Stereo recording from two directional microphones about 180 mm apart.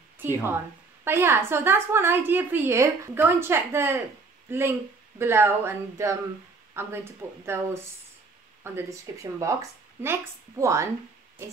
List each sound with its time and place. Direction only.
1.0 s a woman's voice: 15° right (ahead or behind)
6.7 s a sound: 15° right (ahead or behind)
7.4 s a woman's voice: 15° right (ahead or behind)